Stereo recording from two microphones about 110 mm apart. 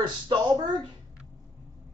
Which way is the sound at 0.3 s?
40° right (ahead or behind).